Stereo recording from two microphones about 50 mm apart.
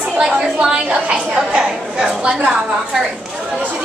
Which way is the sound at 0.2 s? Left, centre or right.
Centre.